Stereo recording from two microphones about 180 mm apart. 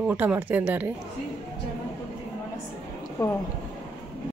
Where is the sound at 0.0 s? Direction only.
5° right (ahead or behind).